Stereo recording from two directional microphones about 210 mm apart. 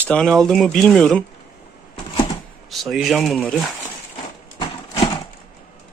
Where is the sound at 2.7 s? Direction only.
Centre (ahead or behind).